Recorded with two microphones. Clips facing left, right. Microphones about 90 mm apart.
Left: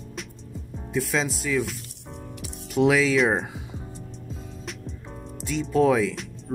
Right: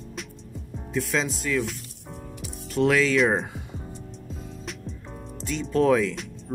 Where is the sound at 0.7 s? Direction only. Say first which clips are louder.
Left 1 dB; centre (ahead or behind).